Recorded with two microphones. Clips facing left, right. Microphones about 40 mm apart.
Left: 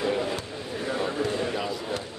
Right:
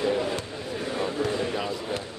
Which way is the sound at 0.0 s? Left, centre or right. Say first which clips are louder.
Right 1 dB; centre.